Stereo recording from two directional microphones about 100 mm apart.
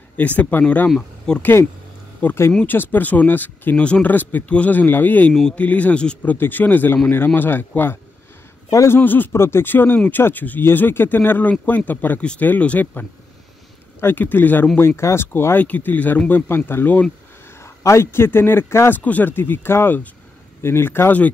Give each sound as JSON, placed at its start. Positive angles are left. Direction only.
{"t": 0.2, "sound": "speech", "side_deg": 15}
{"t": 1.4, "sound": "speech", "side_deg": 20}
{"t": 14.0, "sound": "speech", "side_deg": 20}
{"t": 17.6, "sound": "speech", "side_deg": 30}